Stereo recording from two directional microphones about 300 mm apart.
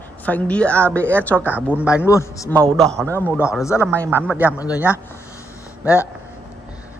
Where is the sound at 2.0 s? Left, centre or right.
Centre.